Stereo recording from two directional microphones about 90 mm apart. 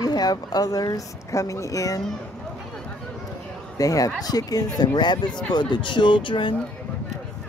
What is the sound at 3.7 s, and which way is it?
Speech, 40° left (ahead or behind).